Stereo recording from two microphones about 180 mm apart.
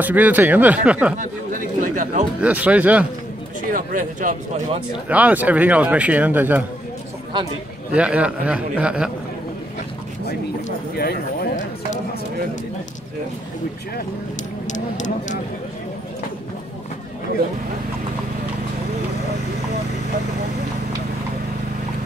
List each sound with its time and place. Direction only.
0.0 s speech: 10° right (ahead or behind)
1.1 s speech: 45° right (ahead or behind)
2.4 s speech: 10° right (ahead or behind)
3.7 s speech: 45° right (ahead or behind)
5.0 s speech: 10° right (ahead or behind)
7.9 s speech: 5° right (ahead or behind)
11.0 s speech: 60° left (ahead or behind)
14.7 s a sound: 45° left (ahead or behind)